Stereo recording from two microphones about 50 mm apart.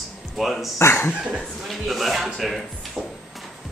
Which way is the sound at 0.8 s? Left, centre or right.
Left.